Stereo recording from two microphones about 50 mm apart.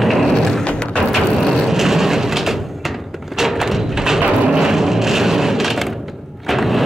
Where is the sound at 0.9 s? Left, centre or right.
Centre.